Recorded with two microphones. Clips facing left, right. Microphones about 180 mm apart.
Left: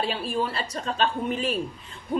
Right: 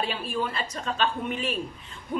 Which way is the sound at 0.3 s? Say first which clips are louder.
Left 2 dB; 35° left (ahead or behind).